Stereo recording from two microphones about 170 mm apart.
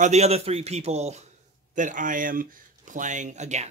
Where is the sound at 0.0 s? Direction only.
40° right (ahead or behind).